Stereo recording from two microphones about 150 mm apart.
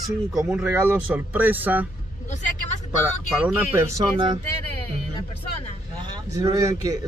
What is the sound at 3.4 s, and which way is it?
Speech, 15° right (ahead or behind).